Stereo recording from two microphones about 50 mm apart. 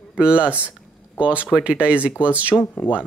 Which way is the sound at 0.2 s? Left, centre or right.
Right.